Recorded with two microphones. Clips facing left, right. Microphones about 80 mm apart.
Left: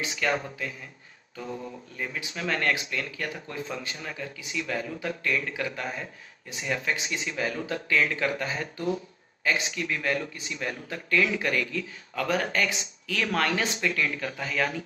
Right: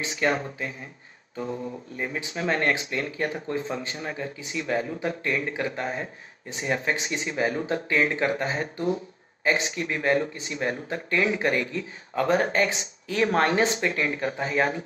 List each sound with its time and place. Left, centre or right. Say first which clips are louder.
0.0 s speech: right 3 dB; right
2.0 s speech: right 3 dB; right